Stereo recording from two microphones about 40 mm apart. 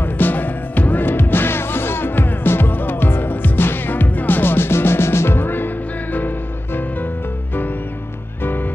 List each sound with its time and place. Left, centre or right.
0.0 s music: left